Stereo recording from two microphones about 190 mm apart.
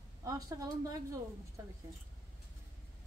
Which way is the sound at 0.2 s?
20° right (ahead or behind).